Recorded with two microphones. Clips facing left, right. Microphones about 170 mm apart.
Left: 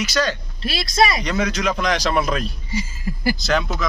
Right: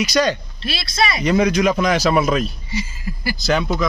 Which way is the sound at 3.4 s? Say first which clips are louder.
Right 3 dB; centre (ahead or behind).